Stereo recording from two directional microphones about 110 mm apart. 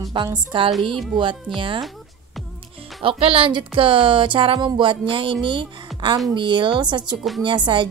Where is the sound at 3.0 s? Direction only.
55° right (ahead or behind).